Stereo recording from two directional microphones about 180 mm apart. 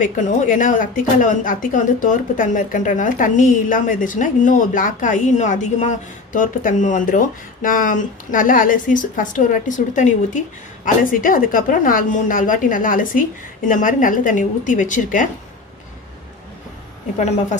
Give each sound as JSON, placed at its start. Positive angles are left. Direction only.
{"t": 0.0, "sound": "a woman's voice", "side_deg": 45}